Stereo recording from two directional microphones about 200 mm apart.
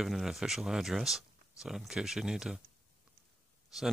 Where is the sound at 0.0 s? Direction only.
Centre (ahead or behind).